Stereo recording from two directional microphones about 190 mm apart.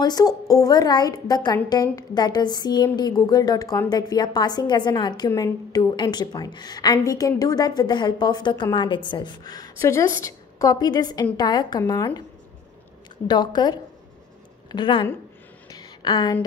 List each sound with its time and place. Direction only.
0.0 s a woman's voice: 20° left (ahead or behind)
13.3 s a woman's voice: 20° left (ahead or behind)
15.7 s a sound: 20° left (ahead or behind)